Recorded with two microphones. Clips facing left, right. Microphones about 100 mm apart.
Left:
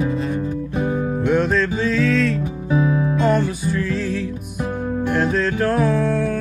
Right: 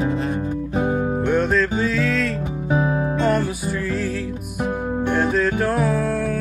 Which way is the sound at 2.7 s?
35° right (ahead or behind).